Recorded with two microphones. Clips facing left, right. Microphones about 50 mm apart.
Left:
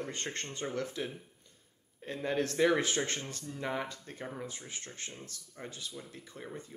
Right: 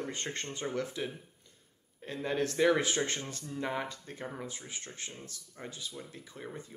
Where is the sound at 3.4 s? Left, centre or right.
Centre.